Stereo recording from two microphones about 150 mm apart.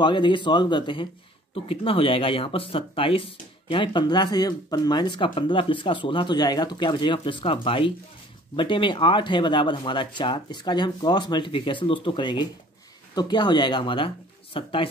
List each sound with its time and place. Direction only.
0.0 s speech: 30° left (ahead or behind)